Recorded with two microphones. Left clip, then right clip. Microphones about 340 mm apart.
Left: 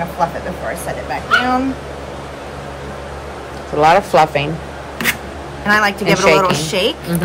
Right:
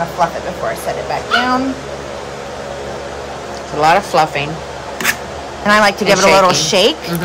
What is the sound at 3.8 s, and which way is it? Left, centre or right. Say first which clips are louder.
Speech: left 1 dB; centre.